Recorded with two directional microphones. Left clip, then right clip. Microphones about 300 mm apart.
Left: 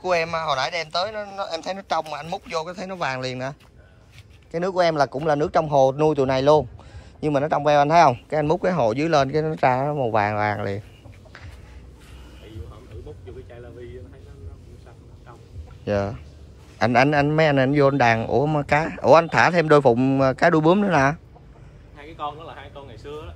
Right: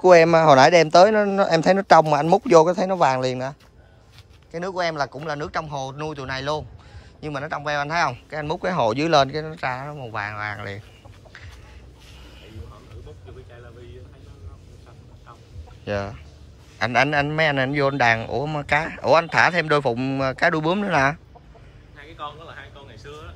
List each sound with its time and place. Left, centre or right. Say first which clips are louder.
0.0 s speech: right 10 dB; right
4.5 s speech: left 5 dB; centre
15.8 s a man's voice: left 3 dB; centre
21.9 s a sound: left 4 dB; left